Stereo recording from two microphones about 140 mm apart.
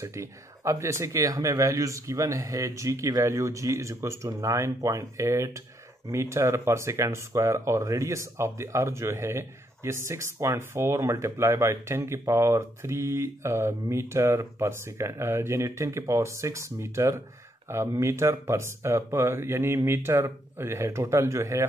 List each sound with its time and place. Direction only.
0.0 s speech: 20° right (ahead or behind)